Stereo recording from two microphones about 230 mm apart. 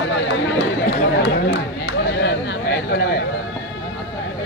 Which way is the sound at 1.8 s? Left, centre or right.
Left.